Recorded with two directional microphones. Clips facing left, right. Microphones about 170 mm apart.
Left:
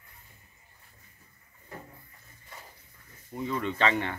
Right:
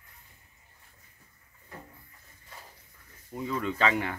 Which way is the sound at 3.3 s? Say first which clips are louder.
Even; 5° right (ahead or behind).